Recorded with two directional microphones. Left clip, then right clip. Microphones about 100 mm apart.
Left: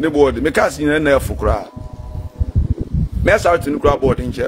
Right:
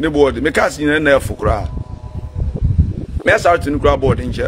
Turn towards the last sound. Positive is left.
turn(degrees=10)  # may be behind; listen again after turning